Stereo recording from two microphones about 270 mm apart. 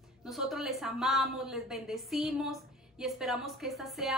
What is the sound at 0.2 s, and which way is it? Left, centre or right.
A woman's voice, centre.